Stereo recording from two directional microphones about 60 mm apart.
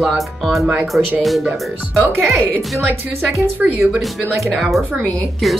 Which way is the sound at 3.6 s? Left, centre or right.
Centre.